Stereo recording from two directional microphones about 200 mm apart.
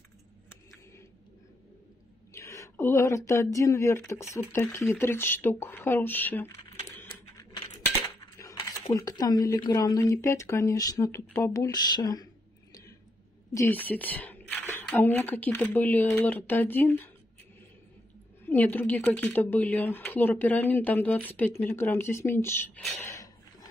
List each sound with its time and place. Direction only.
2.3 s a sound: 15° left (ahead or behind)
3.5 s speech: 15° left (ahead or behind)
6.9 s typing: 15° left (ahead or behind)
8.2 s speech: 15° left (ahead or behind)
13.5 s speech: 10° left (ahead or behind)
18.4 s speech: 10° left (ahead or behind)
23.0 s a sound: 15° left (ahead or behind)